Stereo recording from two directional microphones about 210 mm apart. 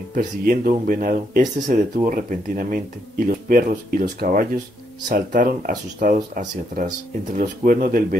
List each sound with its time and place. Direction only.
0.1 s speech: 40° right (ahead or behind)